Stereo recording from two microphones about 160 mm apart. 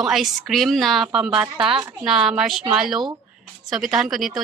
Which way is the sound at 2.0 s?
5° right (ahead or behind).